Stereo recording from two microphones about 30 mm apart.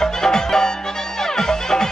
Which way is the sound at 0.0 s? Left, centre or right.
Centre.